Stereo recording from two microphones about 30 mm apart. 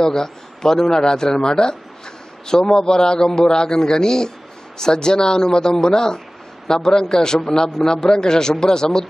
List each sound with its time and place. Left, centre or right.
0.0 s a man's voice: centre